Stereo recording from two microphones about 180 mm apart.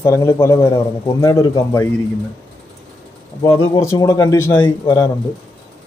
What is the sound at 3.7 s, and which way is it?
Speech, 15° left (ahead or behind).